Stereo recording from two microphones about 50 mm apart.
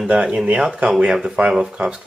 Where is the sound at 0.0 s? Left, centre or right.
Centre.